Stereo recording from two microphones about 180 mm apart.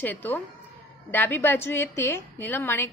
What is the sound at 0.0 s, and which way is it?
A woman's voice, 10° left (ahead or behind).